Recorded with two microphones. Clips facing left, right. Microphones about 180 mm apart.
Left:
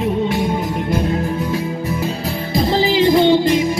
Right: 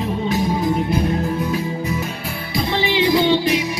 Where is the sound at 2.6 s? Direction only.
40° left (ahead or behind).